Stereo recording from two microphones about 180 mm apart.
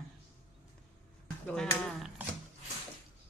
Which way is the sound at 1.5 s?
5° left (ahead or behind).